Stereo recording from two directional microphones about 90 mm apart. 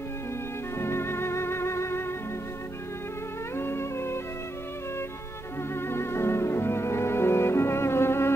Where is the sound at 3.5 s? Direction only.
25° left (ahead or behind).